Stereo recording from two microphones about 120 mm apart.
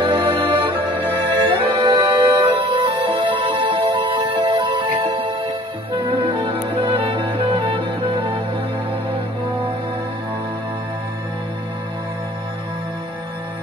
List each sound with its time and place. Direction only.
0.0 s music: 40° right (ahead or behind)